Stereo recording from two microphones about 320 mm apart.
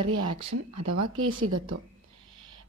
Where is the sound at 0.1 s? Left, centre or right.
Right.